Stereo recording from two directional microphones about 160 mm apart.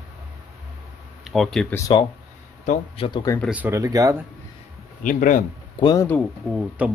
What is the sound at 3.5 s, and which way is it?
Speech, 15° right (ahead or behind).